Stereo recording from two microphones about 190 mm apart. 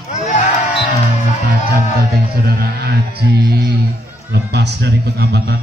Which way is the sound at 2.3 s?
55° right (ahead or behind).